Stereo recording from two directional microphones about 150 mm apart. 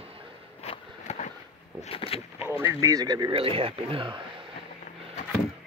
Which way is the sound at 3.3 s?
40° right (ahead or behind).